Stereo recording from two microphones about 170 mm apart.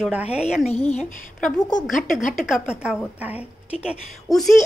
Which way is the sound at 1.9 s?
50° left (ahead or behind).